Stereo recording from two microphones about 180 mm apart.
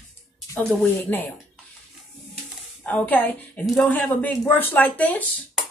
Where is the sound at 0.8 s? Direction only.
10° left (ahead or behind).